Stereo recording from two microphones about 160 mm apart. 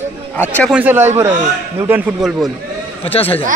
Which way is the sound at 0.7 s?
10° right (ahead or behind).